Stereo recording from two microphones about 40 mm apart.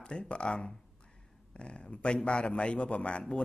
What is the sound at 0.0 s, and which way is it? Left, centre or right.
A man's voice, left.